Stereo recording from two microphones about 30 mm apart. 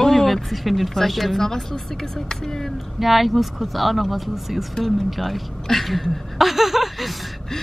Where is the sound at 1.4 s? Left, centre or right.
Centre.